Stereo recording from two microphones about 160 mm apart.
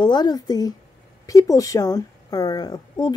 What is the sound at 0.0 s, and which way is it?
Speech, 25° left (ahead or behind).